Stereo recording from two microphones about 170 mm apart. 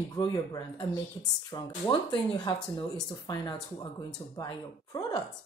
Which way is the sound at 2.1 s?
25° left (ahead or behind).